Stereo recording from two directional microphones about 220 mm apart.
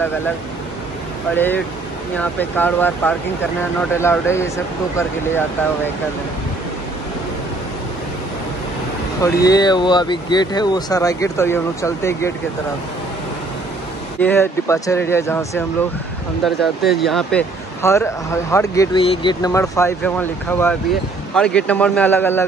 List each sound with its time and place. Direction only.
1.3 s speech: 10° left (ahead or behind)
9.2 s speech: 15° left (ahead or behind)
14.2 s speech: 10° left (ahead or behind)
16.4 s speech: centre (ahead or behind)